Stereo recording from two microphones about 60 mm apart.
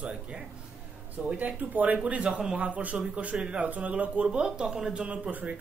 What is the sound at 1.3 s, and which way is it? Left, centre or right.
Speech, right.